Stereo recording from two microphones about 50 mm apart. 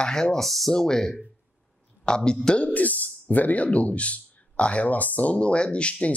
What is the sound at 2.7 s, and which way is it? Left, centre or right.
Speech, left.